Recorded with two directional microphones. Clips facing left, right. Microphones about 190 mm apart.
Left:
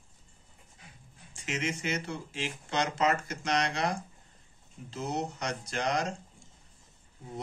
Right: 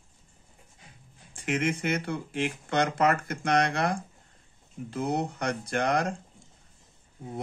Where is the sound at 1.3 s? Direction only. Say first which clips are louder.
Right 6 dB; 55° right (ahead or behind).